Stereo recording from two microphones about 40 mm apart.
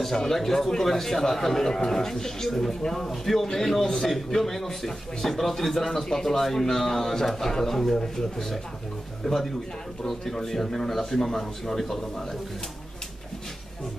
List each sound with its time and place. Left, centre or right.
0.0 s a man's voice: centre
4.1 s a man's voice: centre